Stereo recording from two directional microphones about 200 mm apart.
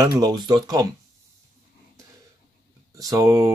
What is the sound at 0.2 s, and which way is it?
Speech, 20° right (ahead or behind).